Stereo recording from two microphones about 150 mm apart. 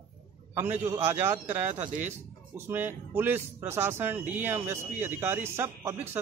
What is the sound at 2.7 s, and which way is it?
Speech, 15° right (ahead or behind).